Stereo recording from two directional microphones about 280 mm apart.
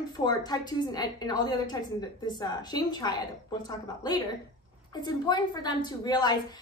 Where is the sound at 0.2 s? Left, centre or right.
Centre.